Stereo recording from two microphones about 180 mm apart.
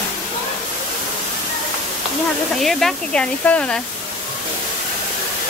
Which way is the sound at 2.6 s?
Centre (ahead or behind).